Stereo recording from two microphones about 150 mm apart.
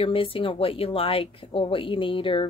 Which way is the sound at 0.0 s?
35° left (ahead or behind).